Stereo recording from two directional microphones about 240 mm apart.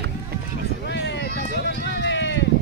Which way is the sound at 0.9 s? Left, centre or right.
Left.